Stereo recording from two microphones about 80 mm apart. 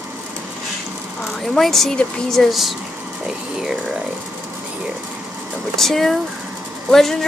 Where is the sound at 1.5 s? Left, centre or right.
Centre.